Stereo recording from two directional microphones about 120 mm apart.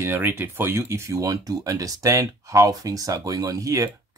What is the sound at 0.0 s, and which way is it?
Speech, 20° right (ahead or behind).